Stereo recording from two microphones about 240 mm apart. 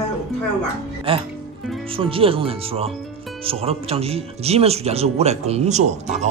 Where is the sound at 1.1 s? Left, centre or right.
Right.